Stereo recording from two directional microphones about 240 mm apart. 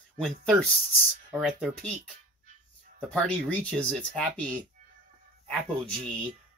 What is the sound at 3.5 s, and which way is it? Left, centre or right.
Speech, centre.